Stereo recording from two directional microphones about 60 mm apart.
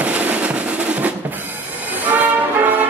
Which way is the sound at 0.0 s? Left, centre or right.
Right.